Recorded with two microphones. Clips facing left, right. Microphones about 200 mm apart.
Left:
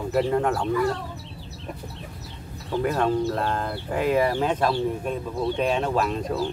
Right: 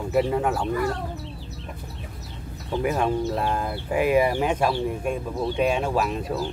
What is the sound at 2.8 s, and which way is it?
Speech, 10° right (ahead or behind).